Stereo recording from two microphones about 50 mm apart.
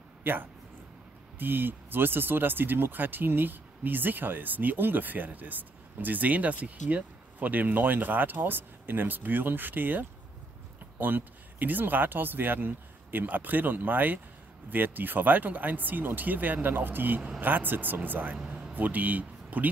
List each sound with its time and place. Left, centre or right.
0.2 s speech: right